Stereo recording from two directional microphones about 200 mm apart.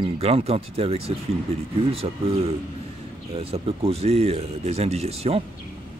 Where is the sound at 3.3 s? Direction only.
30° right (ahead or behind).